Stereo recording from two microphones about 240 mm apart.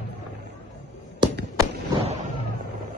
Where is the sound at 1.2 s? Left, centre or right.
Centre.